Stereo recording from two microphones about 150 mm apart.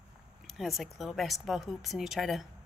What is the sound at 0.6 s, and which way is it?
A woman's voice, centre (ahead or behind).